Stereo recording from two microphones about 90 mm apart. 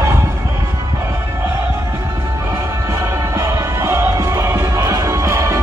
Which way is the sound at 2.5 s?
30° right (ahead or behind).